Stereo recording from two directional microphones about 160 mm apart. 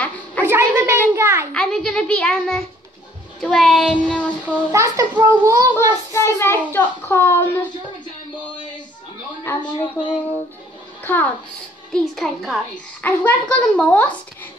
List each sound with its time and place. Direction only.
0.4 s a sound: 15° right (ahead or behind)
1.5 s a child's voice: 5° left (ahead or behind)
4.5 s a child's voice: 20° right (ahead or behind)
6.1 s speech: 15° left (ahead or behind)
9.5 s speech: 15° left (ahead or behind)
11.1 s speech: 10° left (ahead or behind)
11.9 s a child's voice: centre (ahead or behind)